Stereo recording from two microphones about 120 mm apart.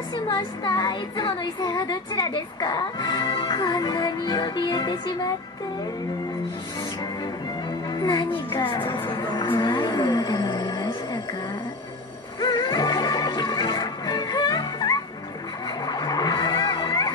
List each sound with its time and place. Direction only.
0.1 s speech: 40° left (ahead or behind)
7.9 s speech: 35° left (ahead or behind)
12.4 s music: 40° left (ahead or behind)
15.8 s vehicle: 35° left (ahead or behind)